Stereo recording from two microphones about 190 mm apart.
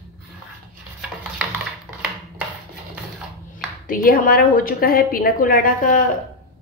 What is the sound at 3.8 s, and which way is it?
Speech, 45° left (ahead or behind).